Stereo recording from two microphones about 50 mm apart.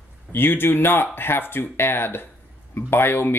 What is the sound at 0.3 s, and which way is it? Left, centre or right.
Speech, left.